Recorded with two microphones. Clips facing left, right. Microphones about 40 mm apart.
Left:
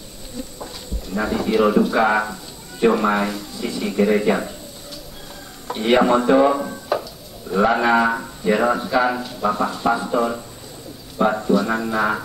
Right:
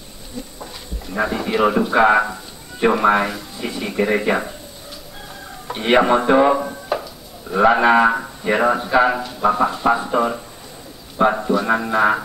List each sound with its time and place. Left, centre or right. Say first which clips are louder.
1.1 s speech: left 1 dB; centre
5.7 s speech: right 1 dB; right